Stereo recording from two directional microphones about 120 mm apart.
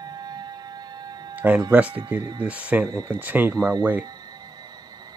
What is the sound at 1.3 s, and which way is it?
Music, 15° right (ahead or behind).